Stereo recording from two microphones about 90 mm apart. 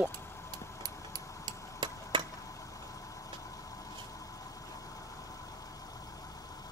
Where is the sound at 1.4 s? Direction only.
60° right (ahead or behind).